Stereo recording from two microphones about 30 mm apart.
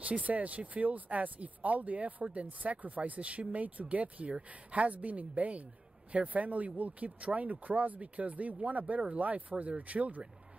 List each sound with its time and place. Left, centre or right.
0.0 s speech: right